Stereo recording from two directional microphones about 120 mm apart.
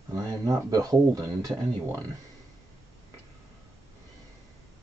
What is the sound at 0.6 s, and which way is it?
Speech, 30° right (ahead or behind).